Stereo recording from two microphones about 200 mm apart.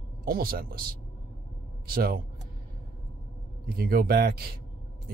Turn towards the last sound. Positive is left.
turn(degrees=-50)  # may be behind; listen again after turning